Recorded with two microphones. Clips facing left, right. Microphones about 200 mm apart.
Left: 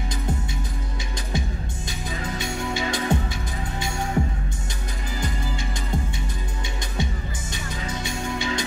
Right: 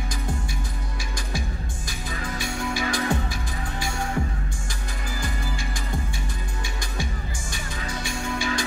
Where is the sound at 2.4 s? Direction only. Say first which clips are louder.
Even; 25° left (ahead or behind).